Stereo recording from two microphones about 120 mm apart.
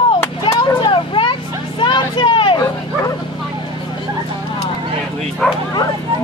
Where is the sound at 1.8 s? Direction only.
40° left (ahead or behind).